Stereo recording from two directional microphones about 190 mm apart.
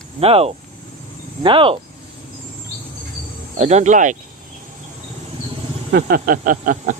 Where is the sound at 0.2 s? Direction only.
30° right (ahead or behind).